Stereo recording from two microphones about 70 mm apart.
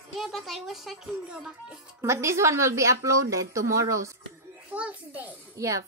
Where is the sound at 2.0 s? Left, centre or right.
Right.